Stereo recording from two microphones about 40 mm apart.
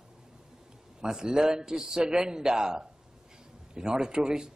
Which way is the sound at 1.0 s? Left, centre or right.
Centre.